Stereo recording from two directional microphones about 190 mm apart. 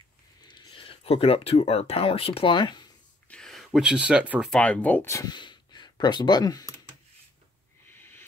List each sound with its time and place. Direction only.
0.5 s speech: 25° left (ahead or behind)
3.3 s speech: 5° left (ahead or behind); by 6.7 s 20° left (ahead or behind)
7.9 s a sound: 10° left (ahead or behind)